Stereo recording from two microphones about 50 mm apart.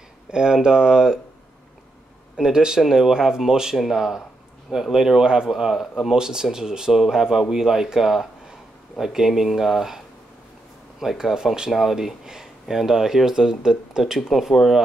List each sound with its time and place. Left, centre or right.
0.3 s speech: centre
2.3 s speech: centre
14.2 s speech: centre